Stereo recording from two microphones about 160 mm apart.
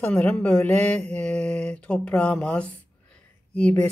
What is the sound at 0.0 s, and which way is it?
Speech, 5° left (ahead or behind).